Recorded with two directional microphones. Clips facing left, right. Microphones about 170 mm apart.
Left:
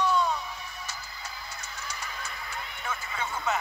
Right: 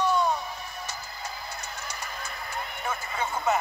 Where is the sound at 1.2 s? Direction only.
45° right (ahead or behind).